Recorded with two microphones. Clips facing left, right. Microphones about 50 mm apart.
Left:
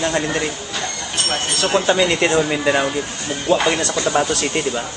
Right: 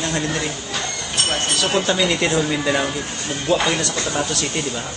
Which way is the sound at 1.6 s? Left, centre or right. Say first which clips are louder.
Left 4 dB; centre.